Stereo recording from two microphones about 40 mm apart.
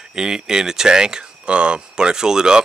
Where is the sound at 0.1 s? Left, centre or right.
Centre.